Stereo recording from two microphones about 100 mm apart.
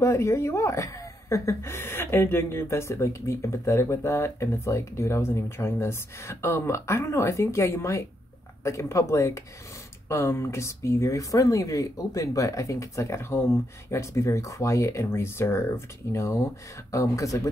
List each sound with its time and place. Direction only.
0.0 s a woman's voice: 30° left (ahead or behind)